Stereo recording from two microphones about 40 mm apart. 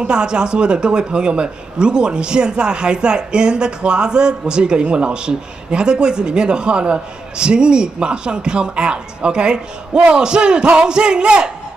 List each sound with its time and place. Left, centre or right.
0.0 s a man's voice: right